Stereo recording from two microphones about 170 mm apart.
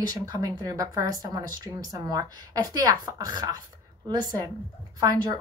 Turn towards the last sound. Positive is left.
turn(degrees=-20)  # may be behind; listen again after turning